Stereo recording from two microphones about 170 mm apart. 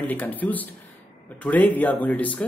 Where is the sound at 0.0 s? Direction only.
10° left (ahead or behind).